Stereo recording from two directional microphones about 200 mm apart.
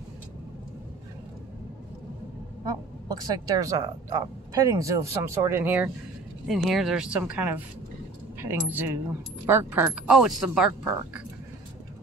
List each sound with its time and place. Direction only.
3.1 s speech: 20° right (ahead or behind)